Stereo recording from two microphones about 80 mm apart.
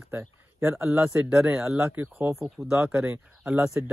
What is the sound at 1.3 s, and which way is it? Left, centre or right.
Speech, centre.